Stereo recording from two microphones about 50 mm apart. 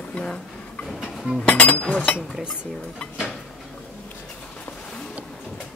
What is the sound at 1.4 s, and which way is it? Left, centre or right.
Speech, left.